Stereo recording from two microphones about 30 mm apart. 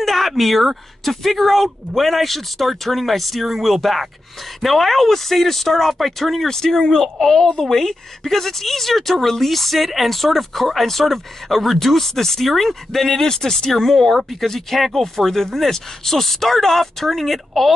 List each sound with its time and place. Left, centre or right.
0.0 s a sound: centre
0.4 s a man's voice: centre
6.4 s speech: centre